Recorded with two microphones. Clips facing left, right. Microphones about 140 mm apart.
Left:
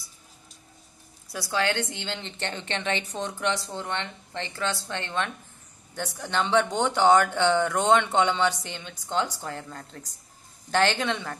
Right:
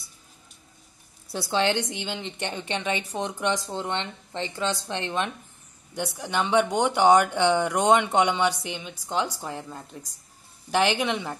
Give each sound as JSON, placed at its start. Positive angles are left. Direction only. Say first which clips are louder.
{"t": 1.3, "sound": "speech", "louder": "right 3 dB", "side_deg": -25}